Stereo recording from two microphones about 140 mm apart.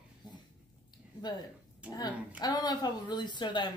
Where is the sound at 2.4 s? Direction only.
30° left (ahead or behind).